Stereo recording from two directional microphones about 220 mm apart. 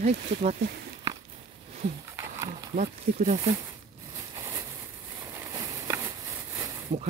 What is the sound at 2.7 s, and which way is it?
Speech, 40° right (ahead or behind).